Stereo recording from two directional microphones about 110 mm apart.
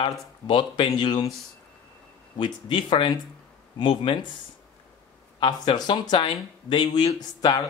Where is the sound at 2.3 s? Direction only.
50° left (ahead or behind).